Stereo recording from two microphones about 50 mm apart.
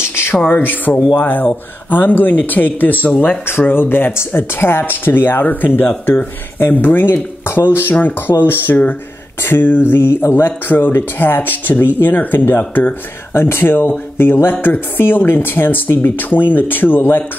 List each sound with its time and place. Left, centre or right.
0.0 s a sound: left
0.5 s speech: left
13.3 s speech: left